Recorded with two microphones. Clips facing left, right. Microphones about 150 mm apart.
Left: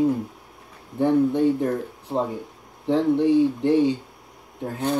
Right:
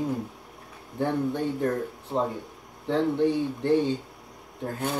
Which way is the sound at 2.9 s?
20° left (ahead or behind).